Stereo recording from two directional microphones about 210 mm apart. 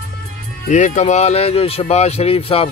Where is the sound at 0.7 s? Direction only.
35° left (ahead or behind).